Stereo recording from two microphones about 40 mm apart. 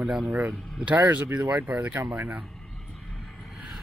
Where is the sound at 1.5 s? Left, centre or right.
Right.